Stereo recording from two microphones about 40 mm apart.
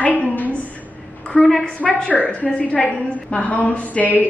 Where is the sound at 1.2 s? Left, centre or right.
Left.